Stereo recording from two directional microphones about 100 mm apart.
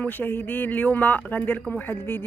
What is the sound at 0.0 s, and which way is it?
Speech, 20° left (ahead or behind).